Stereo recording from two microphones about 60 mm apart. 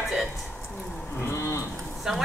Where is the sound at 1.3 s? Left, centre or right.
Left.